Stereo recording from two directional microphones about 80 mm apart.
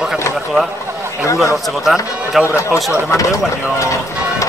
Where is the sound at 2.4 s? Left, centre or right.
Left.